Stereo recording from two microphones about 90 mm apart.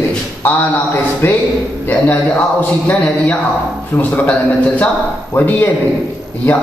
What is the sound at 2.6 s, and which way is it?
A man's voice, 15° left (ahead or behind).